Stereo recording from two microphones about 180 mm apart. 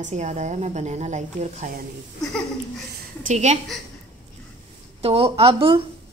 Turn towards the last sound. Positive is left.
turn(degrees=-30)  # may be behind; listen again after turning